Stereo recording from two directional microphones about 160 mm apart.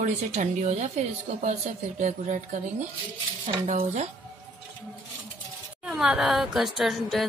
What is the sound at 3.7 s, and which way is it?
Speech, 45° right (ahead or behind).